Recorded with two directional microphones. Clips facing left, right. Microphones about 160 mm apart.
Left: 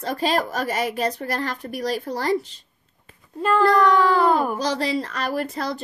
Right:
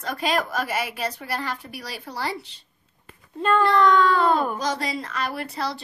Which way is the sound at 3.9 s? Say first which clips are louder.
Left 1 dB; 10° left (ahead or behind).